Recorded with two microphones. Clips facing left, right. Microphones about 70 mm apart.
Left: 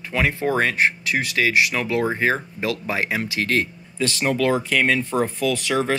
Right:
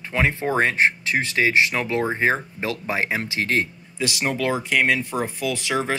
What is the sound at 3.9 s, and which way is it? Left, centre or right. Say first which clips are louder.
Speech: left 3 dB; centre.